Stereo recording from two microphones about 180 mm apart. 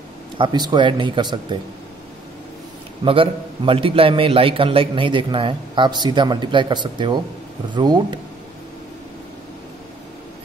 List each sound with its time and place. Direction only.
0.4 s a man's voice: 25° right (ahead or behind)
3.1 s a man's voice: 30° right (ahead or behind)